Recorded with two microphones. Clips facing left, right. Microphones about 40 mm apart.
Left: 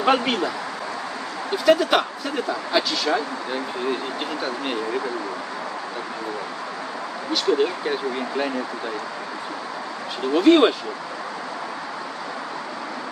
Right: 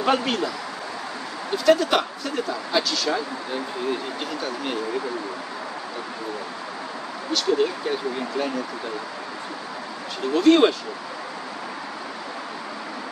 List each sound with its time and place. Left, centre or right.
0.0 s speech: centre
1.7 s speech: centre
10.3 s speech: centre